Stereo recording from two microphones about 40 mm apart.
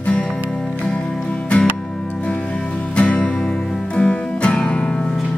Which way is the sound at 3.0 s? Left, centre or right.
Left.